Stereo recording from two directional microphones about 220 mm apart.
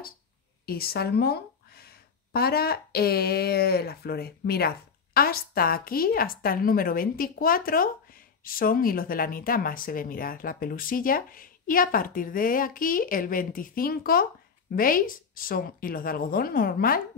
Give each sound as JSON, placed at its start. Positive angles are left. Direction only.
{"t": 0.7, "sound": "speech", "side_deg": 45}